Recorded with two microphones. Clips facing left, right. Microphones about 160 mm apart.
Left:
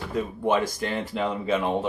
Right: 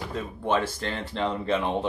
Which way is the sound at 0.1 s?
10° left (ahead or behind).